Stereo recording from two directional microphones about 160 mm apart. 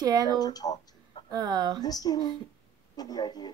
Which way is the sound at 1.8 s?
25° left (ahead or behind).